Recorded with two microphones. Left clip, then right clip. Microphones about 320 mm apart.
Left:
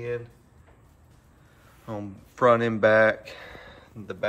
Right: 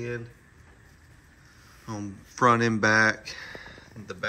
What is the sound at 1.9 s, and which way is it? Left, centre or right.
Speech, centre.